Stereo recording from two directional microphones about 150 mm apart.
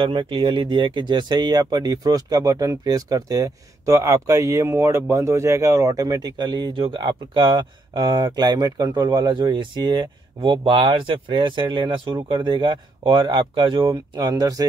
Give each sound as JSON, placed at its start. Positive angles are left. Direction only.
{"t": 0.0, "sound": "speech", "side_deg": -35}